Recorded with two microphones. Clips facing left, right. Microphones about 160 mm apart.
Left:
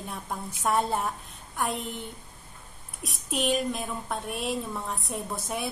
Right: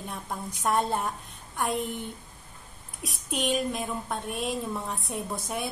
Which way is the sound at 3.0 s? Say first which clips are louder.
Left 1 dB; centre (ahead or behind).